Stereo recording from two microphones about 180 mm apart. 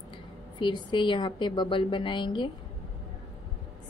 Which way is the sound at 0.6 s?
25° left (ahead or behind).